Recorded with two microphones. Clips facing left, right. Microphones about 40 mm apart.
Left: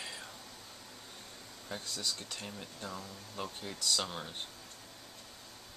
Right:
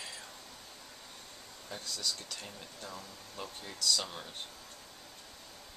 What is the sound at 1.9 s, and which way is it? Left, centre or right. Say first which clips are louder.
Speech: right 2 dB; left.